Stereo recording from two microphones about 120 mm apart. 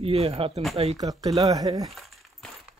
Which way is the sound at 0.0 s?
55° right (ahead or behind).